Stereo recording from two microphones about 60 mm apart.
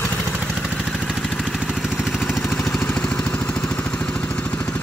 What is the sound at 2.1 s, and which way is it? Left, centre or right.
Vehicle, centre.